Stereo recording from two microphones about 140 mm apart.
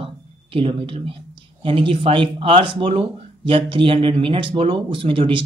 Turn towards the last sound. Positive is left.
turn(degrees=-40)  # may be behind; listen again after turning